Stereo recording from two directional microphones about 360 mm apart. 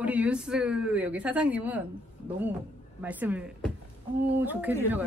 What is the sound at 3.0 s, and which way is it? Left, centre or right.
A woman's voice, centre.